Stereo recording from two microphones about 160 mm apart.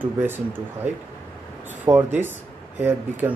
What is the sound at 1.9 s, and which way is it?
Speech, 25° right (ahead or behind).